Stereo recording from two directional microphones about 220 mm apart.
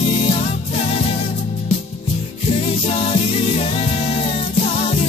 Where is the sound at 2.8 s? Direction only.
25° left (ahead or behind).